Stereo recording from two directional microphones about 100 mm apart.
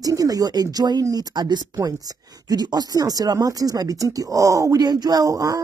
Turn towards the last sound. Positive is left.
turn(degrees=-35)  # may be behind; listen again after turning